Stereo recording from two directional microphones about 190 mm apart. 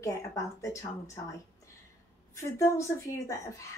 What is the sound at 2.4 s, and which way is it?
A woman's voice, 15° left (ahead or behind).